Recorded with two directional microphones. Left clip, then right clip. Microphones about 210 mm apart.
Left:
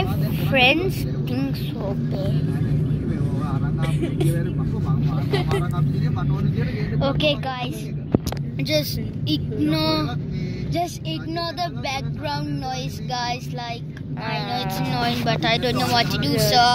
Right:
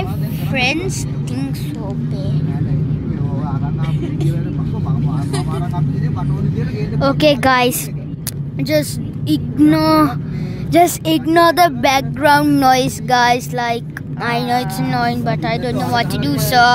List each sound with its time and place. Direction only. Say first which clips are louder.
0.5 s speech: left 1 dB; 5° right (ahead or behind)
7.0 s speech: right 8 dB; 30° right (ahead or behind)
7.4 s speech: right 15 dB; 50° right (ahead or behind)
8.5 s a woman's voice: right 6 dB; 30° right (ahead or behind)
11.1 s speech: right 16 dB; 50° right (ahead or behind)
15.0 s a woman's voice: right 5 dB; 30° right (ahead or behind)
15.4 s speech: right 1 dB; 15° right (ahead or behind)